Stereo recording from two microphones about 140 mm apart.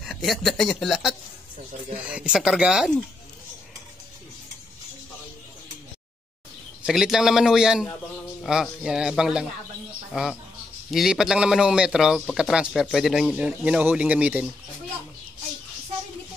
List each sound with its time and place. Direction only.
0.0 s a man's voice: centre (ahead or behind)
6.8 s a man's voice: centre (ahead or behind)
8.4 s a sound: 5° right (ahead or behind)
8.6 s a man's voice: 5° right (ahead or behind)
10.9 s a man's voice: 5° right (ahead or behind)